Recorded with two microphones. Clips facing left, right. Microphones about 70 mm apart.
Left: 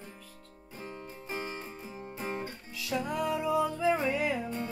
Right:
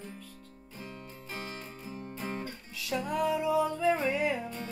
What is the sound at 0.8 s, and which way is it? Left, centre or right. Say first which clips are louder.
Music: left 3 dB; left.